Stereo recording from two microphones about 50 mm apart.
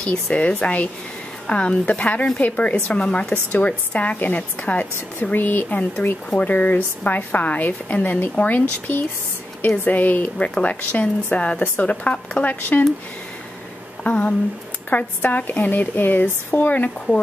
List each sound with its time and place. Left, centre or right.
0.0 s a woman's voice: left
14.0 s a woman's voice: left